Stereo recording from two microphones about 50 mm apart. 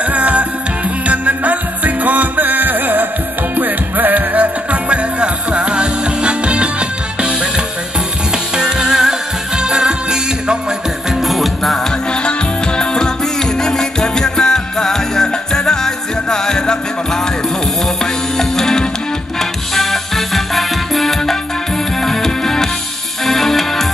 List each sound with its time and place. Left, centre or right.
0.1 s music: right
4.8 s music: right
8.5 s music: centre
11.2 s music: centre
12.3 s music: centre
18.4 s music: centre